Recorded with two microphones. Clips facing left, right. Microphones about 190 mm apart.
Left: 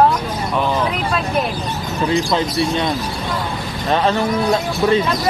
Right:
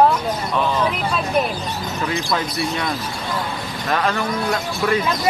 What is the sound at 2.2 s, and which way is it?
Speech, 25° left (ahead or behind).